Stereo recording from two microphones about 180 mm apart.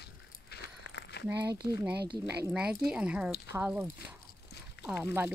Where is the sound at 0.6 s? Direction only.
70° left (ahead or behind).